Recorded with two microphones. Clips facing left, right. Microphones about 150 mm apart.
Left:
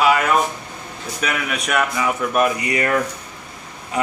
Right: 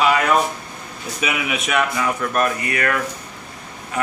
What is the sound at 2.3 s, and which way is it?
Speech, 15° left (ahead or behind).